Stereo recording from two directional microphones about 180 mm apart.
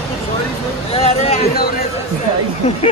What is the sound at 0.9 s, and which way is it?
Speech, 35° left (ahead or behind).